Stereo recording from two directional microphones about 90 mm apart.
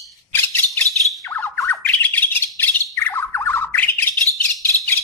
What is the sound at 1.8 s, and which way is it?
Bird, 20° left (ahead or behind).